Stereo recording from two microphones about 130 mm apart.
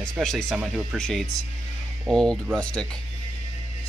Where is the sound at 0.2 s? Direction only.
5° left (ahead or behind).